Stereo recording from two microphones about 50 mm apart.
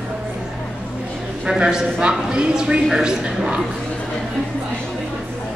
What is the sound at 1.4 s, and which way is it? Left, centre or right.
A man's voice, centre.